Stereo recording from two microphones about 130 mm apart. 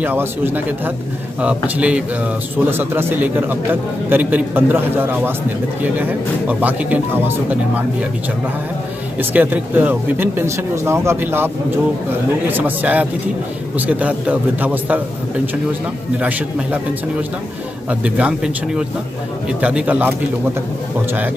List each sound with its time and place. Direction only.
0.0 s speech: 15° right (ahead or behind)
9.2 s speech: 15° right (ahead or behind)
16.2 s speech: 10° right (ahead or behind)
17.8 s speech: 10° right (ahead or behind)